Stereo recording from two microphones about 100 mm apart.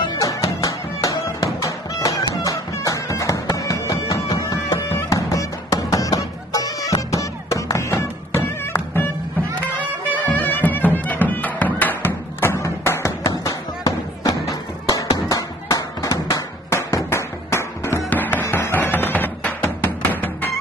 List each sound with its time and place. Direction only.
0.2 s music: 35° left (ahead or behind)
10.1 s music: 20° left (ahead or behind)